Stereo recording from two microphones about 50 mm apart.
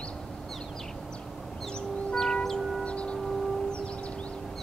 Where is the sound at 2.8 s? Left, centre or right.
Left.